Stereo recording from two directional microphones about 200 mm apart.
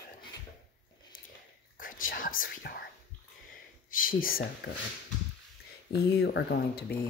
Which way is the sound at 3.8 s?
45° left (ahead or behind).